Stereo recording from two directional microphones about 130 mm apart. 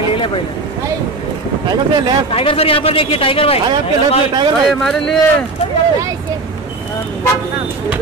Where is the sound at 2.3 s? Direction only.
45° left (ahead or behind).